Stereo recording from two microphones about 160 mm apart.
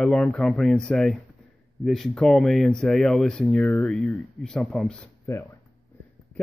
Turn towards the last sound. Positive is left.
turn(degrees=15)  # may be behind; listen again after turning